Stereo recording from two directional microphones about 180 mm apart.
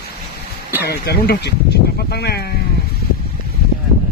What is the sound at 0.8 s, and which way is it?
Speech, 60° left (ahead or behind).